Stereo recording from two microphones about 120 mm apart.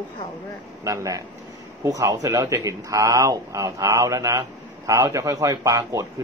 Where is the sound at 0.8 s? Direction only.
25° right (ahead or behind).